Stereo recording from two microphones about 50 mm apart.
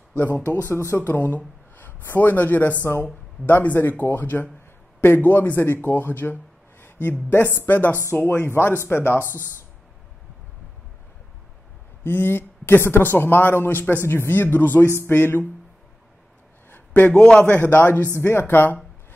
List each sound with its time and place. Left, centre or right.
1.0 s speech: left
12.0 s speech: left
14.0 s speech: left
16.7 s a sound: left
17.1 s a man's voice: centre
17.4 s speech: left
17.6 s speech: left
18.2 s speech: left